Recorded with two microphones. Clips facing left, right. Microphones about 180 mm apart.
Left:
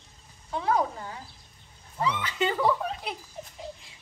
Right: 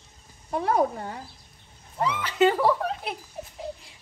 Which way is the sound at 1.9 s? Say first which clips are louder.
Right 5 dB; 60° right (ahead or behind).